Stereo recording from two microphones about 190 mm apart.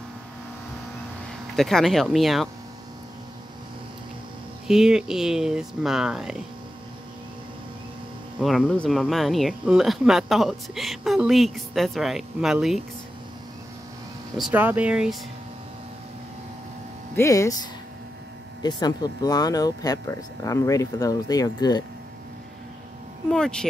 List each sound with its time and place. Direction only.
1.6 s speech: centre (ahead or behind)
4.6 s speech: 5° right (ahead or behind)
8.4 s speech: centre (ahead or behind)
14.3 s speech: 5° right (ahead or behind)
17.1 s speech: 15° left (ahead or behind)
18.6 s speech: 20° left (ahead or behind)
23.3 s speech: 5° left (ahead or behind)